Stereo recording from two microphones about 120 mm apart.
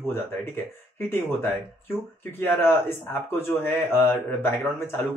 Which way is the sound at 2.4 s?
20° left (ahead or behind).